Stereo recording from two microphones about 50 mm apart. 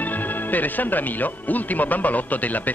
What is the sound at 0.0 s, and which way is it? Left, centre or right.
Speech, left.